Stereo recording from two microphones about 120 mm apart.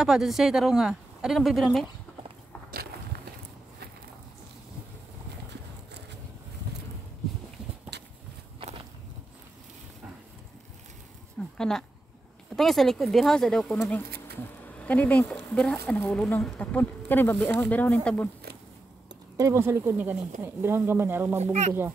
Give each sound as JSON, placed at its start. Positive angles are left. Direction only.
{"t": 0.0, "sound": "speech", "side_deg": 0}
{"t": 11.5, "sound": "a sound", "side_deg": 5}
{"t": 12.5, "sound": "speech", "side_deg": 0}
{"t": 19.3, "sound": "speech", "side_deg": -25}
{"t": 21.4, "sound": "a child's voice", "side_deg": -70}